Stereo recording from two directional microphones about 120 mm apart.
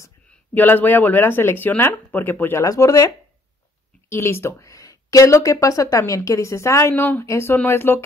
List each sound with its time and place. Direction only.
0.3 s speech: 15° left (ahead or behind)
2.6 s speech: 30° left (ahead or behind)
4.1 s speech: 20° left (ahead or behind)